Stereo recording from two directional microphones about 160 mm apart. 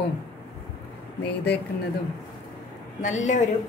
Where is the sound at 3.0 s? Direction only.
50° left (ahead or behind).